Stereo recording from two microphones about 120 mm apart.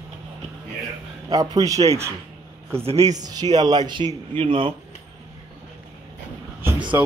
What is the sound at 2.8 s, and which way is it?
Speech, 60° right (ahead or behind).